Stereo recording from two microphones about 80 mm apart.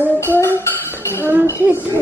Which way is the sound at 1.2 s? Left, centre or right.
Right.